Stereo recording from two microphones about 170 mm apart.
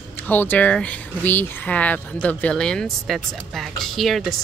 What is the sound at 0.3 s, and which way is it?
Speech, 10° left (ahead or behind).